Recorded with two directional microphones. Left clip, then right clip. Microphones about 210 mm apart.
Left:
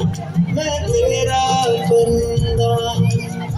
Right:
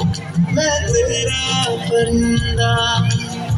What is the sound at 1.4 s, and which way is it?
Music, 70° left (ahead or behind).